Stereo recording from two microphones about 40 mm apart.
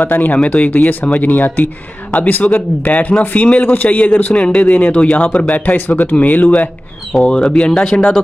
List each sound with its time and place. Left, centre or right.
0.0 s speech: left
7.4 s speech: left